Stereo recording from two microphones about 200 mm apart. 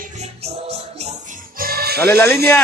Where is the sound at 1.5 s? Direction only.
50° right (ahead or behind).